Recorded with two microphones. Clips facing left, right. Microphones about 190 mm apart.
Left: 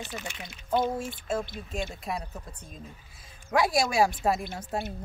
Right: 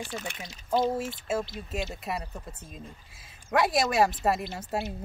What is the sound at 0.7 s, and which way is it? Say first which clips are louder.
Speech: right 1 dB; 5° right (ahead or behind).